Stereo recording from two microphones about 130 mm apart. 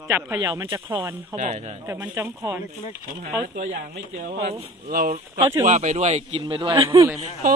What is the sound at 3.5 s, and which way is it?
Speech, 80° right.